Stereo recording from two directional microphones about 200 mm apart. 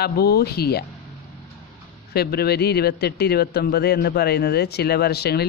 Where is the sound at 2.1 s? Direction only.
50° left (ahead or behind).